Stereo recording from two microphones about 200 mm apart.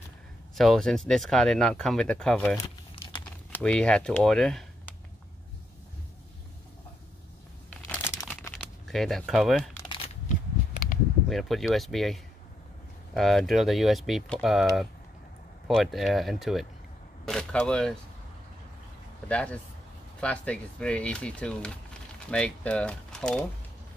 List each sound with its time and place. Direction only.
0.6 s speech: centre (ahead or behind)
3.5 s speech: 5° left (ahead or behind)
7.8 s crumpling: 10° left (ahead or behind)
8.5 s a sound: 15° left (ahead or behind)
8.8 s speech: centre (ahead or behind)
10.2 s a sound: 40° left (ahead or behind)
11.2 s speech: centre (ahead or behind)
19.2 s speech: 5° left (ahead or behind)